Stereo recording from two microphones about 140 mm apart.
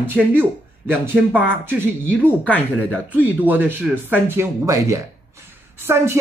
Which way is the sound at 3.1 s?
10° right (ahead or behind).